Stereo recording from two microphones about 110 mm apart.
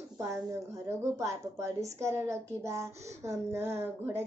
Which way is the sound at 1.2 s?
30° right (ahead or behind).